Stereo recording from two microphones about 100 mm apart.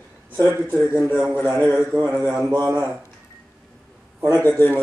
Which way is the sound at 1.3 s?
Centre (ahead or behind).